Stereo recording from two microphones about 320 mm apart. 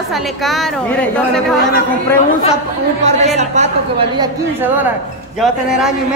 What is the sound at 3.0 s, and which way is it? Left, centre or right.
Speech, right.